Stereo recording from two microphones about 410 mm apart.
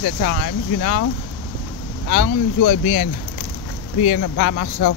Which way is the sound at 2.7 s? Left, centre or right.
Left.